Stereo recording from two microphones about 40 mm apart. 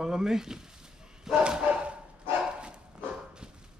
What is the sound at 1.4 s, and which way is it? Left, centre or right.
Bow-wow, right.